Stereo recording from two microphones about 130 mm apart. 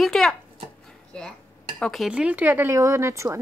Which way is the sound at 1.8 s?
Centre (ahead or behind).